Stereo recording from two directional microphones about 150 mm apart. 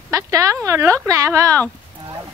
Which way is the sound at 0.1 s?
20° right (ahead or behind).